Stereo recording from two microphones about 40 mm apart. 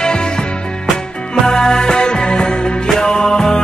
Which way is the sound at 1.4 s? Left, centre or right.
Centre.